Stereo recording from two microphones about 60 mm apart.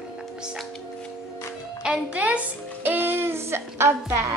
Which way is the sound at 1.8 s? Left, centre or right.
Centre.